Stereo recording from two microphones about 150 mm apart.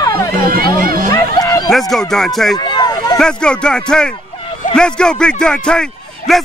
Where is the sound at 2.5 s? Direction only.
30° left (ahead or behind).